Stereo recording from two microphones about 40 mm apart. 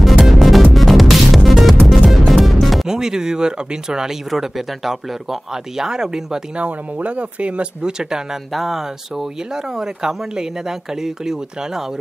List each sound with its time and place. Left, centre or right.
0.0 s music: centre
2.9 s speech: centre
4.3 s speech: centre
6.5 s speech: right
7.8 s speech: centre
8.5 s speech: centre